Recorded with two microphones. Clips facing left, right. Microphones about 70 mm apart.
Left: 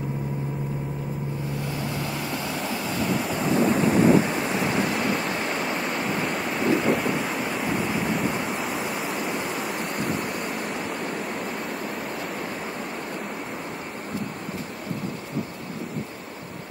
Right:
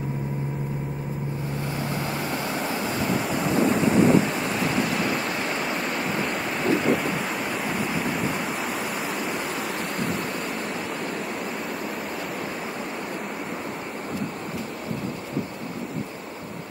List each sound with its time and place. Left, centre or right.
2.3 s music: centre
3.1 s waves: centre
5.0 s waves: centre
5.5 s a sound: centre
8.9 s waves: centre